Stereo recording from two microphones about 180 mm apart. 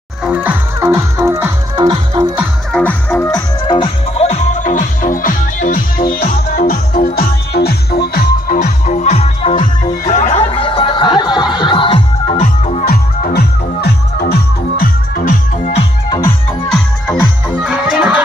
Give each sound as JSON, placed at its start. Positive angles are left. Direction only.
{"t": 0.2, "sound": "music", "side_deg": -10}
{"t": 2.7, "sound": "music", "side_deg": 10}
{"t": 8.6, "sound": "music", "side_deg": 40}
{"t": 12.8, "sound": "music", "side_deg": 55}
{"t": 17.6, "sound": "music", "side_deg": -5}